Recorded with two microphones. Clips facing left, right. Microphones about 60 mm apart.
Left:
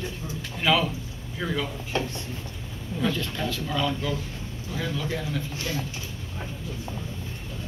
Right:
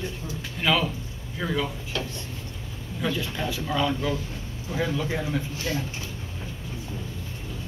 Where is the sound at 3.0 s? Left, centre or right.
Centre.